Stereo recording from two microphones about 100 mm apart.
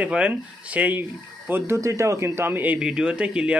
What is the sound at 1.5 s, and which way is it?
Speech, 30° right (ahead or behind).